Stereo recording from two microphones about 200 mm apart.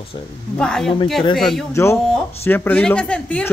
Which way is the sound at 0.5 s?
5° left (ahead or behind).